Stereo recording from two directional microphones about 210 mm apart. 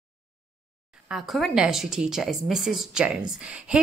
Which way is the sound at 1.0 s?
Centre (ahead or behind).